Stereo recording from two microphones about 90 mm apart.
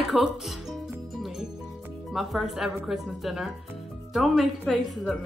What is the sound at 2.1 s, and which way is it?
A woman's voice, centre (ahead or behind).